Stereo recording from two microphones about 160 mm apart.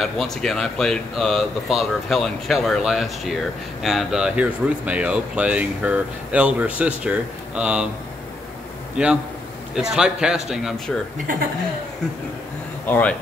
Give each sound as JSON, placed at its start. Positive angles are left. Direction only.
{"t": 0.0, "sound": "speech", "side_deg": 0}
{"t": 8.9, "sound": "a man's voice", "side_deg": -5}
{"t": 12.8, "sound": "speech", "side_deg": 10}